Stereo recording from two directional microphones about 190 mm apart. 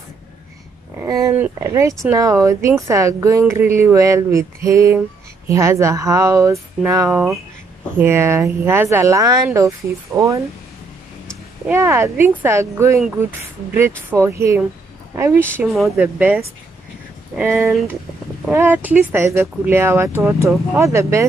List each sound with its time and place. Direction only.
0.9 s speech: 15° right (ahead or behind)
11.7 s speech: 15° right (ahead or behind)
14.1 s speech: 15° right (ahead or behind)